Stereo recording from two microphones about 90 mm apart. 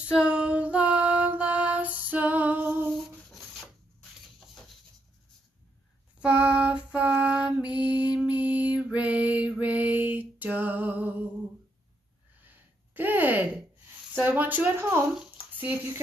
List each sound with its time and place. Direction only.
0.1 s female singing: 10° right (ahead or behind)
6.1 s female singing: 15° right (ahead or behind)
12.9 s a sound: 20° right (ahead or behind)
14.1 s speech: 20° right (ahead or behind)
15.3 s bathtub: 20° right (ahead or behind)